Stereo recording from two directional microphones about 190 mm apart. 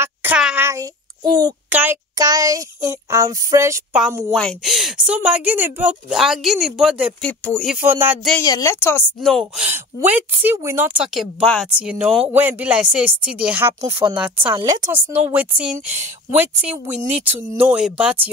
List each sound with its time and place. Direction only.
0.0 s a sound: 10° right (ahead or behind)
1.7 s speech: 10° right (ahead or behind)
4.3 s speech: centre (ahead or behind)
7.2 s speech: 5° left (ahead or behind)
7.7 s speech: 10° right (ahead or behind)
8.4 s a woman's voice: 15° left (ahead or behind)
9.3 s speech: centre (ahead or behind)
13.7 s speech: 30° right (ahead or behind)
14.4 s speech: 15° right (ahead or behind)